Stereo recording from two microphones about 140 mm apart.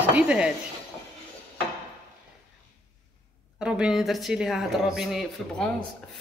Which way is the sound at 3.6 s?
5° right (ahead or behind).